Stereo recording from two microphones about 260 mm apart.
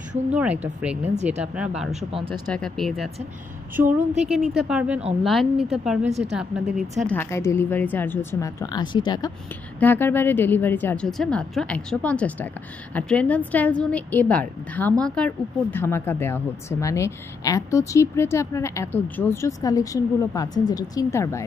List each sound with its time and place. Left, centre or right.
0.3 s a woman's voice: centre
2.1 s speech: centre
2.5 s a woman's voice: centre
3.8 s speech: right
4.3 s a woman's voice: centre
6.0 s speech: right
6.3 s a woman's voice: centre
7.1 s a woman's voice: centre